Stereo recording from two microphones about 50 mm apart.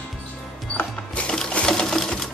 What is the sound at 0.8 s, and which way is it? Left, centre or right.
Music, left.